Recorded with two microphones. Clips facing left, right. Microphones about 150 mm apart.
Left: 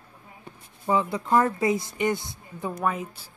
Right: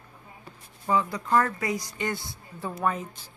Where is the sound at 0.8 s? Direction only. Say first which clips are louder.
Left 2 dB; 20° left (ahead or behind).